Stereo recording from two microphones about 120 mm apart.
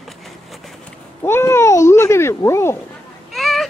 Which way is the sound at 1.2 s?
20° left (ahead or behind).